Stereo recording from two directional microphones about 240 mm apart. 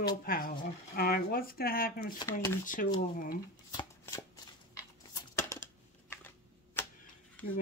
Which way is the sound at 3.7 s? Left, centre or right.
Centre.